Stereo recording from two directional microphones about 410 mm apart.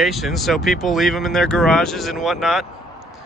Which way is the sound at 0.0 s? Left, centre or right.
Centre.